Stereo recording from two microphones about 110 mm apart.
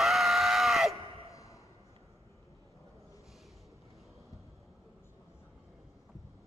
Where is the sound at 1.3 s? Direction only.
30° left (ahead or behind).